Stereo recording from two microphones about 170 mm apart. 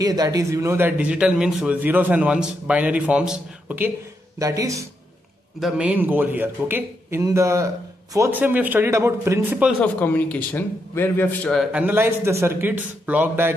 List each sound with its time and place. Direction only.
0.0 s a man's voice: 20° right (ahead or behind)
5.6 s a man's voice: 5° right (ahead or behind)
9.8 s a man's voice: 10° left (ahead or behind)
11.7 s a man's voice: 10° right (ahead or behind)